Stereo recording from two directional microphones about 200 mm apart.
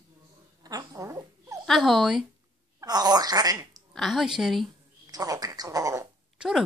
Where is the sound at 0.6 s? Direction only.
20° right (ahead or behind).